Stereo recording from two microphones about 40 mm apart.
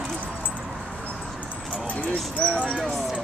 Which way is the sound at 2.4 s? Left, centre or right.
Left.